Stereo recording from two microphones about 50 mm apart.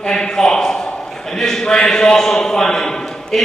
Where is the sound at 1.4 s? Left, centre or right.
Centre.